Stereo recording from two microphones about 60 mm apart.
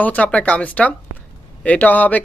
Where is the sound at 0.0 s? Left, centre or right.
Left.